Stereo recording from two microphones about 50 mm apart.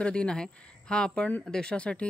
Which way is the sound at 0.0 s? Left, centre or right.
Centre.